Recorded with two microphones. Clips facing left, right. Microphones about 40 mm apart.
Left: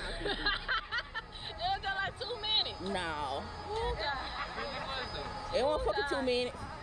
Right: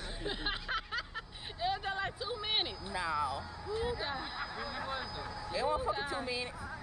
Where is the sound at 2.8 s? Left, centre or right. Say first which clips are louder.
Right 1 dB; left.